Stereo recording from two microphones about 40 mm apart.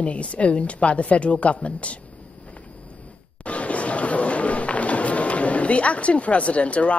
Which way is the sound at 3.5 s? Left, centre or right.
Left.